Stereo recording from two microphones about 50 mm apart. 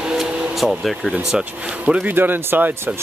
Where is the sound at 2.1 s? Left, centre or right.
Right.